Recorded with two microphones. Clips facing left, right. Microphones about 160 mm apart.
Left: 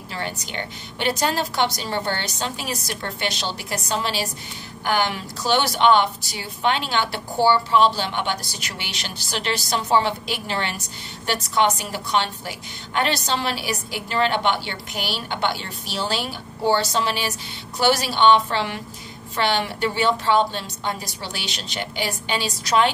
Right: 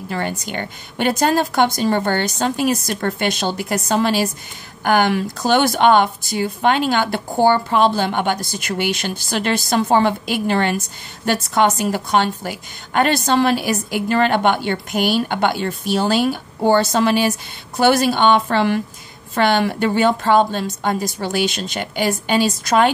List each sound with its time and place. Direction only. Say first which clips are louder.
0.1 s a woman's voice: right 6 dB; 50° right (ahead or behind)